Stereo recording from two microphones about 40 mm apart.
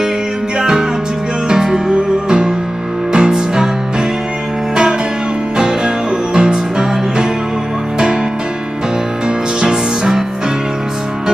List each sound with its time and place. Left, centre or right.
0.6 s music: centre
6.3 s music: centre
9.6 s music: centre